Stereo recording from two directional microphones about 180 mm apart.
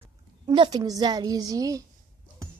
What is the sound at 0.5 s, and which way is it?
A woman's voice, 25° right (ahead or behind).